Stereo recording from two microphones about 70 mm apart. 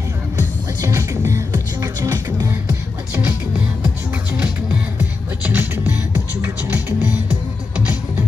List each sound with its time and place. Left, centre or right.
0.7 s music: right
1.5 s music: right
3.3 s music: right